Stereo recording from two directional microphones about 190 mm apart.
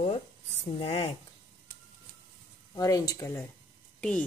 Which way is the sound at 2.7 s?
20° left (ahead or behind).